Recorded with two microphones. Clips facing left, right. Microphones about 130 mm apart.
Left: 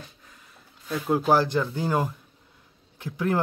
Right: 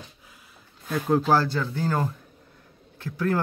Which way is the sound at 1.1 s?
15° left (ahead or behind).